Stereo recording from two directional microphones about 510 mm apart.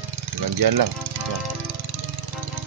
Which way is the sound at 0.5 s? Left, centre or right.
Right.